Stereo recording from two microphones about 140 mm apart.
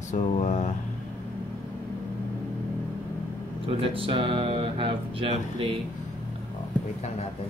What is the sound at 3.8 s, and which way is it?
Speech, 40° right (ahead or behind).